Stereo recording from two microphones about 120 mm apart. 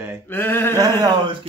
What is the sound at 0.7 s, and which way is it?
Speech, 30° right (ahead or behind).